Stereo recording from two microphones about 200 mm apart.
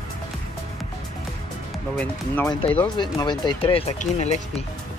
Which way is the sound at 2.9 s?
20° left (ahead or behind).